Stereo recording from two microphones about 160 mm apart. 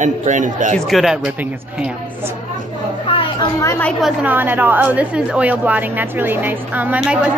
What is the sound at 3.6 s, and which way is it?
Speech, 15° left (ahead or behind).